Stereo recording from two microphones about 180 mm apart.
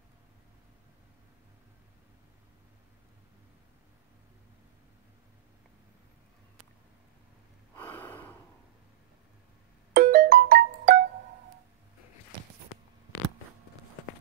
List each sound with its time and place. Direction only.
7.7 s gasp: 10° left (ahead or behind)
9.9 s music: 55° right (ahead or behind)